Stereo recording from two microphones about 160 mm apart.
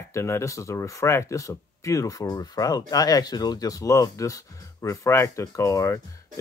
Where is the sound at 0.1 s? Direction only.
15° left (ahead or behind).